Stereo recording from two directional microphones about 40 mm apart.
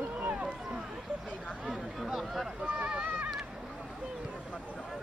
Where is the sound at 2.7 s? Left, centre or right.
Right.